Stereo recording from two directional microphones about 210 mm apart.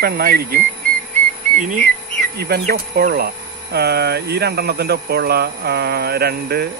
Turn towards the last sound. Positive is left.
turn(degrees=-50)  # may be behind; listen again after turning